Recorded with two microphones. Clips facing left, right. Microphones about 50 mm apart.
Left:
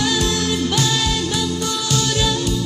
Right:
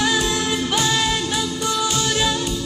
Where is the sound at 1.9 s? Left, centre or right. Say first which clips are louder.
Left 1 dB; right.